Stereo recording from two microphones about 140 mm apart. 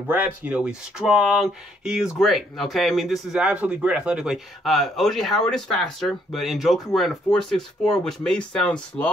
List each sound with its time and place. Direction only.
0.1 s speech: 10° right (ahead or behind); by 9.1 s 10° left (ahead or behind)